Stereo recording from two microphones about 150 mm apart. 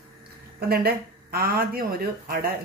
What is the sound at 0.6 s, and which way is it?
Speech, 90° right.